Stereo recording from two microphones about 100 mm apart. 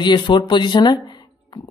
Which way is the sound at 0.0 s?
55° left (ahead or behind).